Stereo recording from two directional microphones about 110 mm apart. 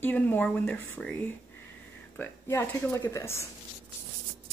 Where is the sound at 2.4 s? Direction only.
25° left (ahead or behind).